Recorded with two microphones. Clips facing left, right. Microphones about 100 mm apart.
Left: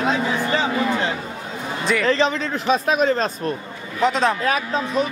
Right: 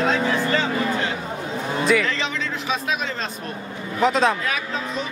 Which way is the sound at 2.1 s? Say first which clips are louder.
Left 7 dB; 40° left (ahead or behind).